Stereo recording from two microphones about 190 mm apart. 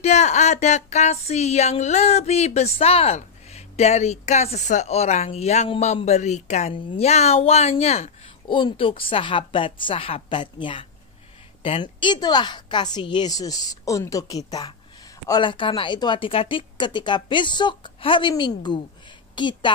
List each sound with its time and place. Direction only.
0.0 s a woman's voice: 35° left (ahead or behind)